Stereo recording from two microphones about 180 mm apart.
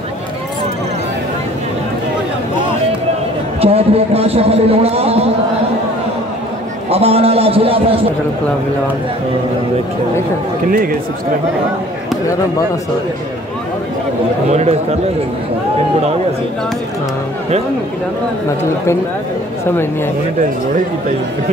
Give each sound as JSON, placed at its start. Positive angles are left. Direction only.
{"t": 3.6, "sound": "a man's voice", "side_deg": -35}
{"t": 6.9, "sound": "a man's voice", "side_deg": -35}
{"t": 10.7, "sound": "a man's voice", "side_deg": -50}
{"t": 14.5, "sound": "a man's voice", "side_deg": -40}